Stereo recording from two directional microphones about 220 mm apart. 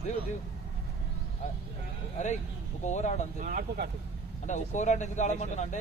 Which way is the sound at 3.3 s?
40° right (ahead or behind).